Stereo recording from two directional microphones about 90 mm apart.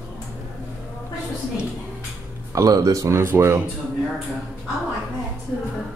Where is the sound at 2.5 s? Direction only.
40° right (ahead or behind).